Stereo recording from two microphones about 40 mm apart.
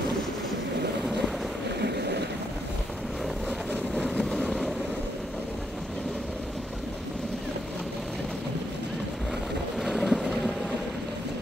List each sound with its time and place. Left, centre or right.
4.3 s vehicle: centre
9.8 s vehicle: centre